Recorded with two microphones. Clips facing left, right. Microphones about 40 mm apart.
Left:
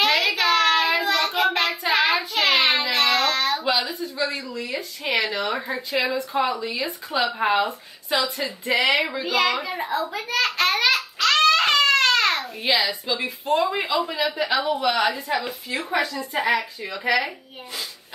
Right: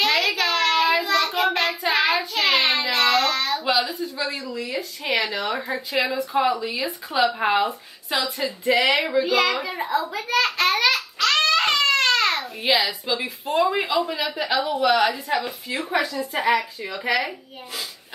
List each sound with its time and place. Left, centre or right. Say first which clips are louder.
0.0 s a sound: left 1 dB; centre
0.8 s child singing: right 1 dB; centre
2.8 s a sound: right 1 dB; centre
5.1 s a child's voice: even; centre
12.2 s babbling: left 1 dB; centre
12.7 s a child's voice: even; centre
16.3 s speech: right 1 dB; centre
16.9 s a child's voice: left 1 dB; centre